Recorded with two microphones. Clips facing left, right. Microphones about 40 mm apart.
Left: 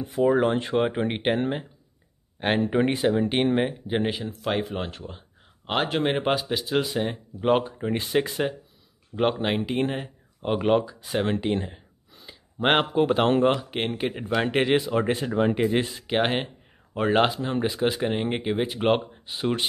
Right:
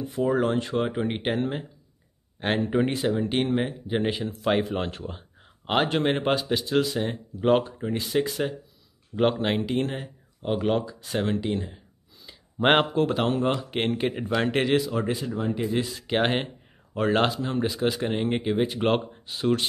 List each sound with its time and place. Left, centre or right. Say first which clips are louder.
0.1 s speech: left 3 dB; centre
2.7 s speech: left 2 dB; centre
4.0 s speech: right 1 dB; centre
7.8 s speech: left 1 dB; left
9.1 s speech: right 1 dB; centre
11.2 s speech: left 2 dB; left
12.5 s speech: right 1 dB; centre
12.9 s speech: left 2 dB; centre
13.2 s speech: left 4 dB; left
13.6 s speech: right 2 dB; centre; by 15.0 s left
15.0 s speech: left 4 dB; left
15.9 s speech: even; centre